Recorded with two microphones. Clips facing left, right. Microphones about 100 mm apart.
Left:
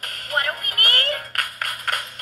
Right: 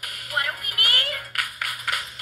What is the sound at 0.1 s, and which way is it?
Music, 50° left (ahead or behind).